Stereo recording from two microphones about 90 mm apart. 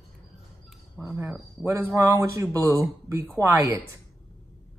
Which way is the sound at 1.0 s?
30° right (ahead or behind).